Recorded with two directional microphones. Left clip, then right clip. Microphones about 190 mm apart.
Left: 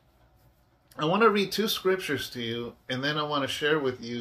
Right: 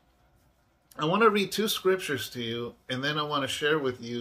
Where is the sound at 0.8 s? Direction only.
20° right (ahead or behind).